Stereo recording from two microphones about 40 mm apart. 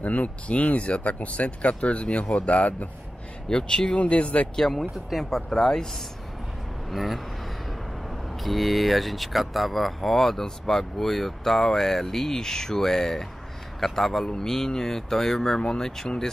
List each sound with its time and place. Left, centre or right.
0.0 s speech: left
3.4 s speech: left
3.9 s speech: left
4.6 s speech: centre
6.9 s speech: centre
8.4 s speech: centre